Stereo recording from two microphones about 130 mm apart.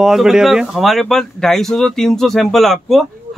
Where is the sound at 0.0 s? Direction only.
5° right (ahead or behind).